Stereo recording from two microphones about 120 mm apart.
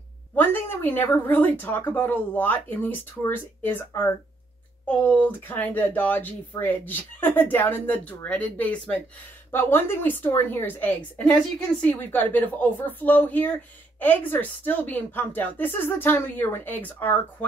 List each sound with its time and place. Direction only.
0.4 s speech: 15° left (ahead or behind)